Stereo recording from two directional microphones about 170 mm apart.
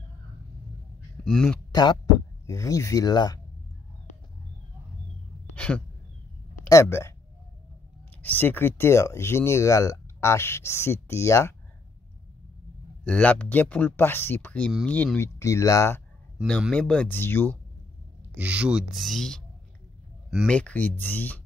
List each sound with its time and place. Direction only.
1.2 s speech: 5° left (ahead or behind)
1.7 s speech: 25° left (ahead or behind)
6.6 s speech: 15° left (ahead or behind)
8.2 s speech: 10° left (ahead or behind)
13.0 s speech: 10° left (ahead or behind)
16.3 s speech: centre (ahead or behind)
18.3 s speech: 10° right (ahead or behind)
20.5 s speech: 5° left (ahead or behind)